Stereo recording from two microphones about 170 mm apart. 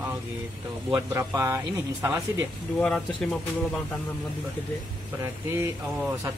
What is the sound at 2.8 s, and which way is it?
Speech, 5° left (ahead or behind).